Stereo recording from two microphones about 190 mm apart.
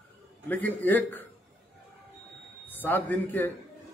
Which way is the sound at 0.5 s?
10° left (ahead or behind).